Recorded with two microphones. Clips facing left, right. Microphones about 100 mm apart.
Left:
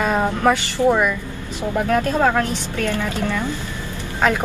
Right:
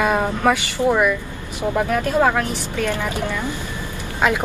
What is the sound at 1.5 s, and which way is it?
Speech, 15° right (ahead or behind).